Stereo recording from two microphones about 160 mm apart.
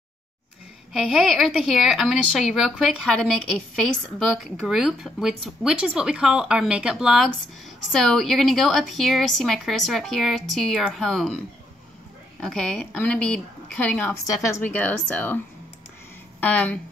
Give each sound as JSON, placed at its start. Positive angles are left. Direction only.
{"t": 0.9, "sound": "a woman's voice", "side_deg": 0}
{"t": 12.4, "sound": "a woman's voice", "side_deg": 5}
{"t": 14.2, "sound": "a woman's voice", "side_deg": 20}
{"t": 14.6, "sound": "a woman's voice", "side_deg": 10}
{"t": 16.3, "sound": "a woman's voice", "side_deg": 10}